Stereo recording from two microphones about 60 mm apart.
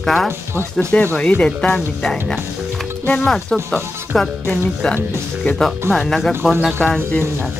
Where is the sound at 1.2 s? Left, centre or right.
Centre.